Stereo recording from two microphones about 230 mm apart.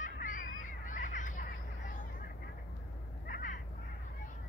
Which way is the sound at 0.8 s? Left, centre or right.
Left.